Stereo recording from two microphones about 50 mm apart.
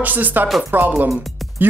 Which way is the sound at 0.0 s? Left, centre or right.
Right.